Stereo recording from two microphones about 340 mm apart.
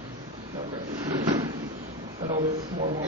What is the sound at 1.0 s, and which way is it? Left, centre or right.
Drawer open or close, centre.